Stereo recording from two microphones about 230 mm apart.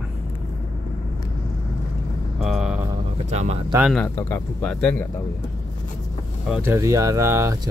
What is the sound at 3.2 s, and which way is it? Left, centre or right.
Speech, right.